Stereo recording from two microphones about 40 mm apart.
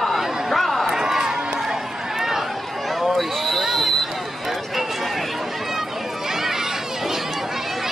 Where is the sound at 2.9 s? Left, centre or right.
Centre.